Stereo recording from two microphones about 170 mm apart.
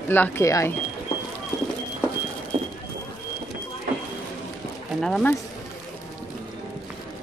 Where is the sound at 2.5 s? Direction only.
40° right (ahead or behind).